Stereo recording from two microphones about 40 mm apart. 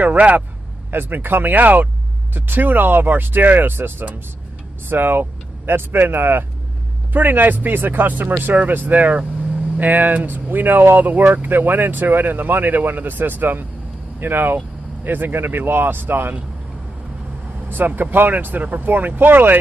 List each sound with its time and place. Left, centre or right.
0.0 s speech: right
0.9 s speech: right
2.3 s speech: right
11.0 s speech: right
17.6 s speech: right